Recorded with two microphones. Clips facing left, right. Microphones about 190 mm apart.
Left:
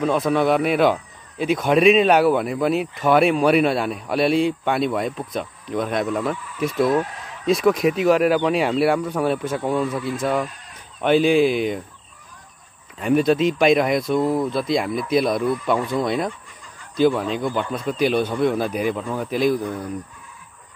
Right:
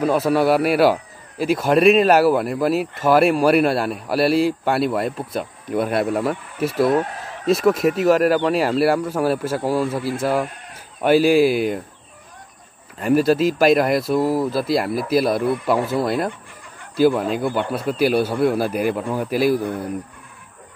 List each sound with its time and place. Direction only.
0.0 s a man's voice: 5° right (ahead or behind)
9.8 s speech: 30° right (ahead or behind)
10.2 s speech: 5° right (ahead or behind)
13.0 s a man's voice: 5° right (ahead or behind)